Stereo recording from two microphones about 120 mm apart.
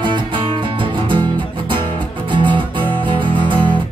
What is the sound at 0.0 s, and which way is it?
Music, 40° right (ahead or behind).